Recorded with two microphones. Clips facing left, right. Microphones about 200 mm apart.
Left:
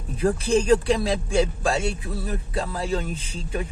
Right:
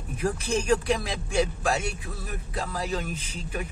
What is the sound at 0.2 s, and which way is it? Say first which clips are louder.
Speech: left 6 dB; 30° left (ahead or behind).